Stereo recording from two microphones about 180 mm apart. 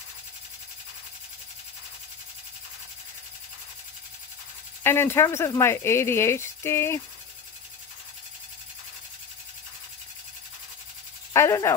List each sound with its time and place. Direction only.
4.8 s speech: 15° left (ahead or behind)
11.3 s speech: 15° left (ahead or behind)